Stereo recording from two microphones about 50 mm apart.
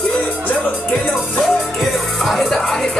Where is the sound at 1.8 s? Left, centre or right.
Centre.